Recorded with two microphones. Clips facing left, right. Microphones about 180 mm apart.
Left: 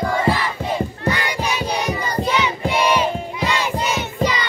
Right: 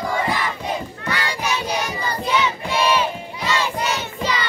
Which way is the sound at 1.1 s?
15° left (ahead or behind).